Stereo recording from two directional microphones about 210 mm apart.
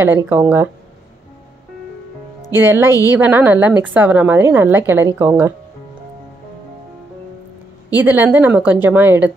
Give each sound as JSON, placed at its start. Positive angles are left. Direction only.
{"t": 0.0, "sound": "a woman's voice", "side_deg": -10}
{"t": 2.5, "sound": "a woman's voice", "side_deg": -10}
{"t": 8.0, "sound": "a woman's voice", "side_deg": -10}